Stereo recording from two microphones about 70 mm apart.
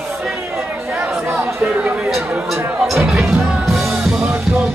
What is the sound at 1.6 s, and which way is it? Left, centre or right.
Chatter, centre.